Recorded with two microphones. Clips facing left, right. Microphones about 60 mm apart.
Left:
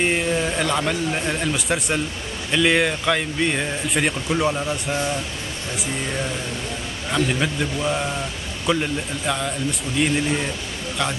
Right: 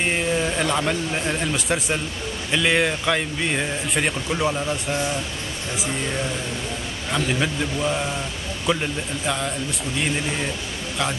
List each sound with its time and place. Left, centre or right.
0.0 s speech: centre